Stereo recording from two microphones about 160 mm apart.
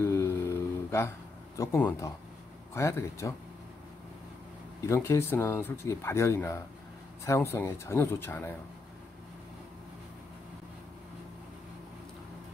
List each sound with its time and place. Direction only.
0.0 s music: 15° left (ahead or behind)
1.6 s speech: 15° left (ahead or behind)
4.8 s speech: 15° left (ahead or behind)